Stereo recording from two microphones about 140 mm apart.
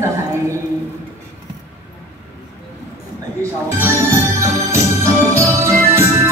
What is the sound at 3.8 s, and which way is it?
Organ, 20° right (ahead or behind).